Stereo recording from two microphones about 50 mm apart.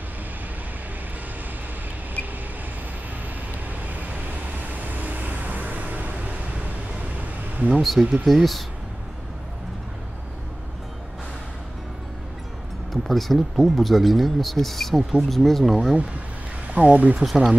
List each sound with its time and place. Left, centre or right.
3.8 s vehicle: right
7.5 s speech: right
7.8 s speech: centre
12.9 s speech: centre
16.7 s speech: right
17.2 s speech: centre